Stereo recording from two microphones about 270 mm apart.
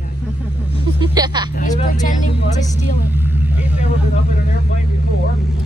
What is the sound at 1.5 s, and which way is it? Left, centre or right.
Vehicle, left.